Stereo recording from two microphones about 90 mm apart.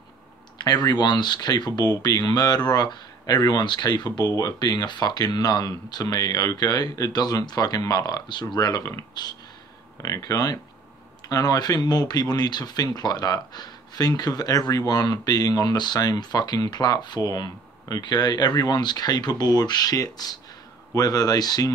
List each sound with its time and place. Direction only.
0.6 s speech: 50° left (ahead or behind)
10.0 s speech: 40° left (ahead or behind)